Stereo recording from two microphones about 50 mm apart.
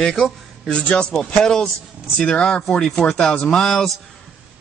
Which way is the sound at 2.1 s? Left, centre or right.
Left.